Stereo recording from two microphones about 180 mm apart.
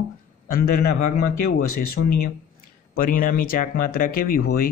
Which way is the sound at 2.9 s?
50° left (ahead or behind).